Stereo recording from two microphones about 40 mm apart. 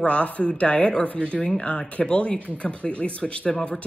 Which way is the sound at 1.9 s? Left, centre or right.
Left.